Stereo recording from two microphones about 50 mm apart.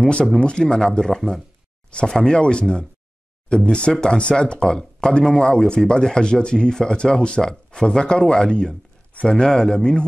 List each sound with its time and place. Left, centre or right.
0.0 s speech: centre
2.6 s speech: centre
3.4 s speech: centre